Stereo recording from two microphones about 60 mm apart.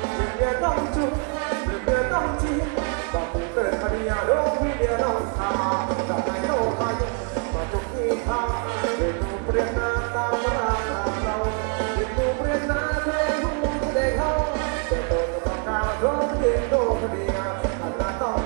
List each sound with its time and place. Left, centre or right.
0.4 s music: centre
8.1 s music: centre
12.2 s music: centre